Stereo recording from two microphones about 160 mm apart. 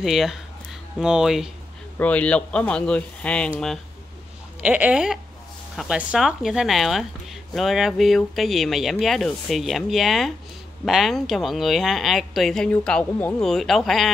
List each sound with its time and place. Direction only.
0.0 s speech: centre (ahead or behind)
2.0 s speech: 10° left (ahead or behind)
4.6 s speech: 10° right (ahead or behind)